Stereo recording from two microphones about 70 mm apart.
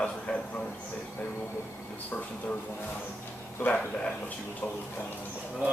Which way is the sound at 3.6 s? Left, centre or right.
Centre.